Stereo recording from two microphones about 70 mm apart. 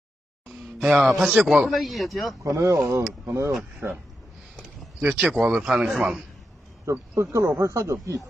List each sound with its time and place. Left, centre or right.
0.8 s speech: centre
1.4 s speech: right
1.7 s speech: centre
2.5 s speech: right
3.8 s a man's voice: right
5.0 s speech: centre
6.9 s speech: right